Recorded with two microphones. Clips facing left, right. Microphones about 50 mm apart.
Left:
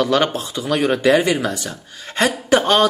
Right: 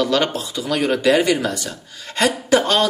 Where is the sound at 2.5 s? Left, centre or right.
Left.